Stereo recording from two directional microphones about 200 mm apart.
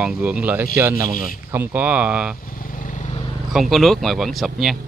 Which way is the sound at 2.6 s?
40° left (ahead or behind).